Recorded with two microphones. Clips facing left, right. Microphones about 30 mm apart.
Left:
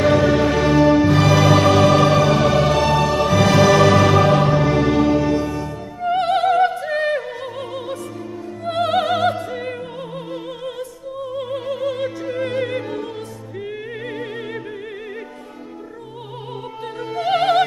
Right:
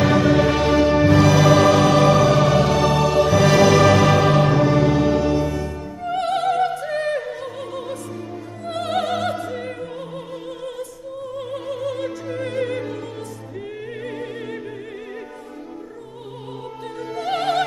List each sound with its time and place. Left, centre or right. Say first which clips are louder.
0.0 s music: left 1 dB; centre
4.7 s music: left 1 dB; centre
5.0 s music: left 1 dB; centre
6.0 s opera: left 4 dB; left
8.6 s music: left 4 dB; centre
11.3 s music: left 3 dB; centre
14.0 s music: left 1 dB; left
17.0 s music: left 4 dB; left
17.3 s music: left 5 dB; centre